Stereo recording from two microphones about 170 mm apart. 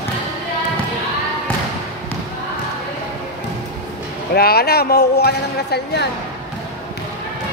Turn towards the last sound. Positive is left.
turn(degrees=75)  # may be behind; listen again after turning